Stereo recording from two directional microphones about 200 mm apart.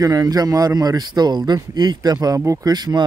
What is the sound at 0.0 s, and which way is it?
A man's voice, 20° right (ahead or behind).